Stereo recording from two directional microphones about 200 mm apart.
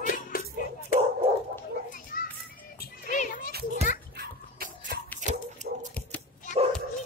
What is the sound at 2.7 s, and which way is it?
Music, 40° left (ahead or behind).